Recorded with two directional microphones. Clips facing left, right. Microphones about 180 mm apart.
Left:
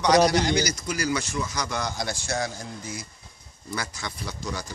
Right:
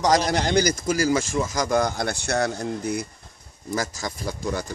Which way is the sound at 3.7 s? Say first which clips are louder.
Right 6 dB; 40° right (ahead or behind).